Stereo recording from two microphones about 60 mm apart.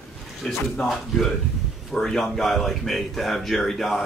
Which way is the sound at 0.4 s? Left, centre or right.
Centre.